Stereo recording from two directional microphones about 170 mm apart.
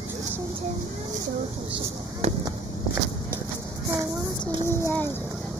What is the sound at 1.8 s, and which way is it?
Fireworks, 40° right (ahead or behind).